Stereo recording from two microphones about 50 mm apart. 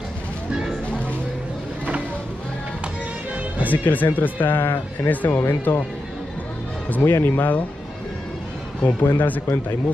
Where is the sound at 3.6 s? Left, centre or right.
Left.